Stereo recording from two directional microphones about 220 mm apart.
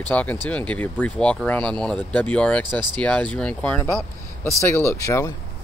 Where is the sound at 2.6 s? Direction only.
20° right (ahead or behind).